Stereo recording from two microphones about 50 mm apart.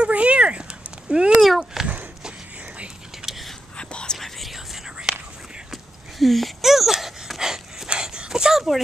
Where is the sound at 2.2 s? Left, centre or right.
Centre.